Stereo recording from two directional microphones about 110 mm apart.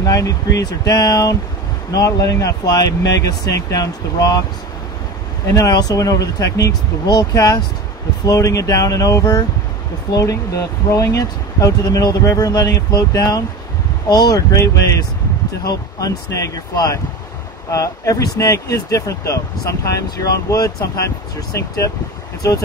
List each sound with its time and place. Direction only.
0.0 s speech: 30° left (ahead or behind)
5.5 s speech: 35° left (ahead or behind)